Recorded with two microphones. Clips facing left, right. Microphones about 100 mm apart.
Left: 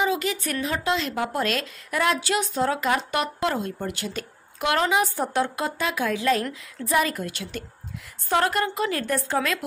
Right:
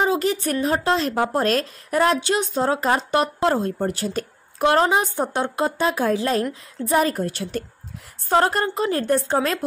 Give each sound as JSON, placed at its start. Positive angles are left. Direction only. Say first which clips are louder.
{"t": 0.0, "sound": "speech", "louder": "right 4 dB", "side_deg": -40}
{"t": 2.1, "sound": "speech", "louder": "right 3 dB", "side_deg": -25}